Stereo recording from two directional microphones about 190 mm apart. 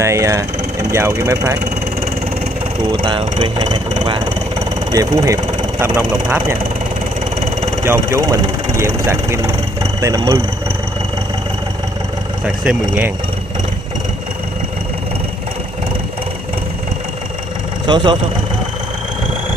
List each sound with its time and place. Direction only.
0.0 s speech: 15° right (ahead or behind)
2.9 s speech: 25° right (ahead or behind)
4.9 s speech: 20° right (ahead or behind)
7.8 s speech: 15° right (ahead or behind)
12.4 s speech: 5° right (ahead or behind)
17.8 s speech: 25° right (ahead or behind)